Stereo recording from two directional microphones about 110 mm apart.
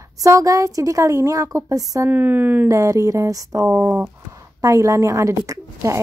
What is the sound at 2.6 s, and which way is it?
A woman's voice, 30° right (ahead or behind).